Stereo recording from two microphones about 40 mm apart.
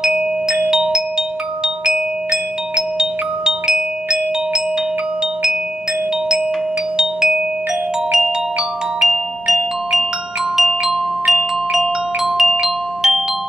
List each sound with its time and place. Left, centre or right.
0.7 s glockenspiel: centre
2.7 s glockenspiel: centre
7.0 s marimba: centre
9.0 s glockenspiel: centre